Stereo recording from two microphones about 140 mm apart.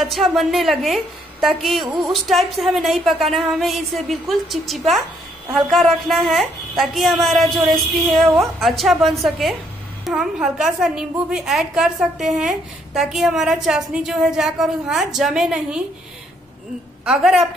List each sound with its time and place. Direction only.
0.0 s a woman's voice: centre (ahead or behind)
17.0 s a woman's voice: 5° right (ahead or behind)